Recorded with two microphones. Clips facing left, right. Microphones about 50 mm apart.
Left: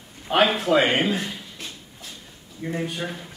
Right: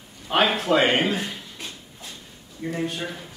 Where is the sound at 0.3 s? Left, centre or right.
Centre.